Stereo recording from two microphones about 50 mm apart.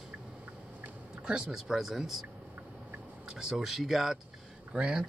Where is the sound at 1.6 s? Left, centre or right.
Centre.